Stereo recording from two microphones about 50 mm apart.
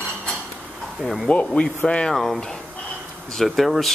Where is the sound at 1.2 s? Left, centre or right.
Centre.